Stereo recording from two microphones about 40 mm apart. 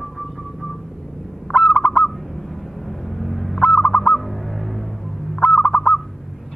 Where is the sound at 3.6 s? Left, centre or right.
Left.